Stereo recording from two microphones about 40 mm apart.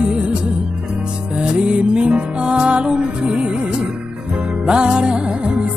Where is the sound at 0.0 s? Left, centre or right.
Right.